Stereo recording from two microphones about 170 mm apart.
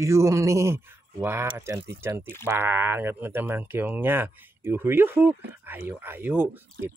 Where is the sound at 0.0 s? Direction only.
15° right (ahead or behind).